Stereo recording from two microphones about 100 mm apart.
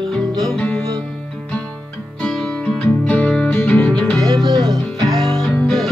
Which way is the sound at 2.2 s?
5° left (ahead or behind).